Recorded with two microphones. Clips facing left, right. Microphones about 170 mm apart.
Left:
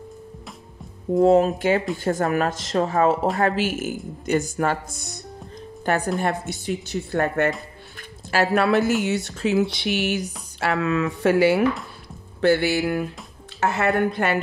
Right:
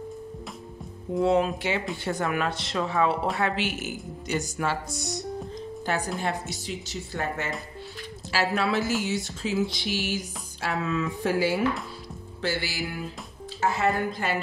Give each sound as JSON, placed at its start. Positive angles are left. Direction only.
{"t": 1.2, "sound": "speech", "side_deg": 45}
{"t": 5.9, "sound": "speech", "side_deg": 55}
{"t": 12.4, "sound": "speech", "side_deg": 60}